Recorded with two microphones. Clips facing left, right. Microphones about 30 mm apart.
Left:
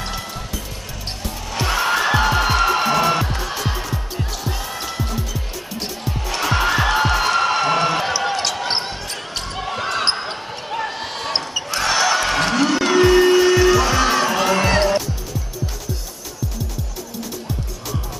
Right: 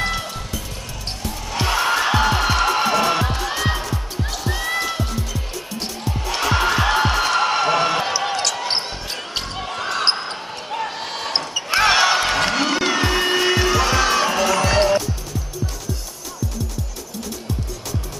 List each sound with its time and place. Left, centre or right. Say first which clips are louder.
0.0 s music: right 4 dB; centre
1.5 s music: even; centre
6.2 s music: even; centre
8.5 s basketball bounce: left 1 dB; centre
9.1 s basketball bounce: right 1 dB; centre
9.5 s basketball bounce: left 4 dB; centre
11.7 s basketball bounce: right 3 dB; right
12.3 s a sound: left 1 dB; centre
13.3 s music: left 4 dB; centre
14.4 s music: left 1 dB; centre
14.8 s music: right 1 dB; centre